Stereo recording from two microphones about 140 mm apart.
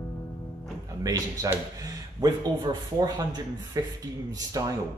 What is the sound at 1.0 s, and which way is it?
Speech, 25° right (ahead or behind).